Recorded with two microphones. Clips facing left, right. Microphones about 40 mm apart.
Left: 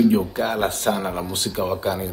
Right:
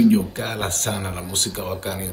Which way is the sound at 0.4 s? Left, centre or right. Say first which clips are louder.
Left 4 dB; right.